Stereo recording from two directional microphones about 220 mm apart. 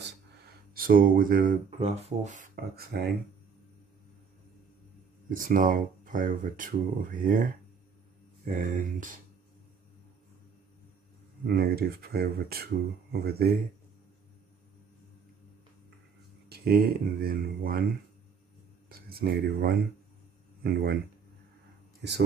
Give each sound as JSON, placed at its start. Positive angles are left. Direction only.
{"t": 0.7, "sound": "speech", "side_deg": -40}
{"t": 5.3, "sound": "speech", "side_deg": -35}
{"t": 8.7, "sound": "speech", "side_deg": -40}
{"t": 11.4, "sound": "speech", "side_deg": -45}
{"t": 16.4, "sound": "speech", "side_deg": -45}
{"t": 18.9, "sound": "speech", "side_deg": -45}